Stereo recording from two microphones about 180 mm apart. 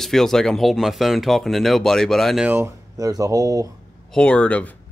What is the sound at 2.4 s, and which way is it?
Speech, 10° right (ahead or behind).